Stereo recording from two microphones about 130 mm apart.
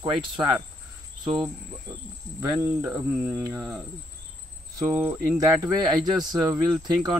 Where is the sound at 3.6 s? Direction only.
5° right (ahead or behind).